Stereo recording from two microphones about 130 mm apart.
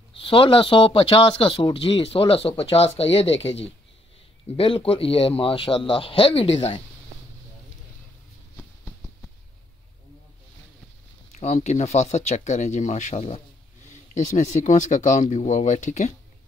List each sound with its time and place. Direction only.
0.1 s speech: 45° left (ahead or behind)
8.5 s a sound: 10° left (ahead or behind)
11.3 s speech: 60° left (ahead or behind)
14.1 s speech: 65° left (ahead or behind)